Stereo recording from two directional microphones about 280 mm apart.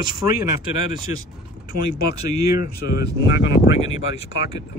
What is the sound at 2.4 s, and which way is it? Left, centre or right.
Speech, centre.